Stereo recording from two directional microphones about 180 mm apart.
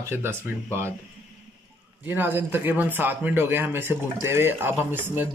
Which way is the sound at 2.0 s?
10° right (ahead or behind).